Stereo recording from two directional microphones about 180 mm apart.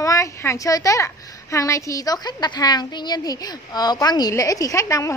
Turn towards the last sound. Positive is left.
turn(degrees=15)  # may be behind; listen again after turning